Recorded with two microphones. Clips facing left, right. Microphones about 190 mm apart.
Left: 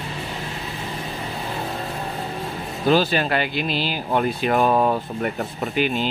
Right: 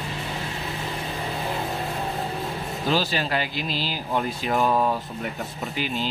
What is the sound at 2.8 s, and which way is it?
Speech, 55° left (ahead or behind).